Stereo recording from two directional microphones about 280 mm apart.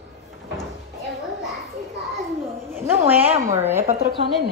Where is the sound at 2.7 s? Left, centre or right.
Centre.